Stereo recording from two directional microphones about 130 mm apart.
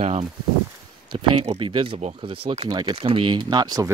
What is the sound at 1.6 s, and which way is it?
Speech, 40° right (ahead or behind).